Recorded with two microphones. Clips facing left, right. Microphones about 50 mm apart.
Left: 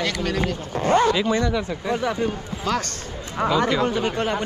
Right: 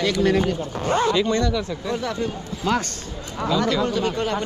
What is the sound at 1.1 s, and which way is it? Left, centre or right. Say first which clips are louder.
Speech: even; centre.